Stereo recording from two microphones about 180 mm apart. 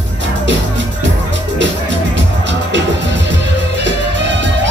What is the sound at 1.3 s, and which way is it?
Music, 85° right.